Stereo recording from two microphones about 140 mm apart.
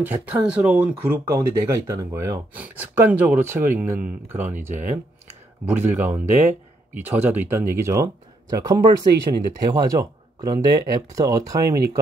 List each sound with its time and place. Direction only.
0.0 s speech: 10° right (ahead or behind)
1.2 s speech: 20° right (ahead or behind)
9.3 s speech: 40° right (ahead or behind)
9.7 s speech: 25° right (ahead or behind)